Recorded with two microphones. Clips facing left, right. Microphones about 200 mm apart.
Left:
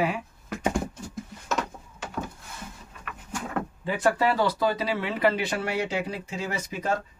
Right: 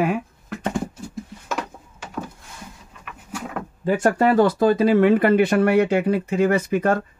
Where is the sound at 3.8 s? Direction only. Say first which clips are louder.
Right 6 dB; 45° right (ahead or behind).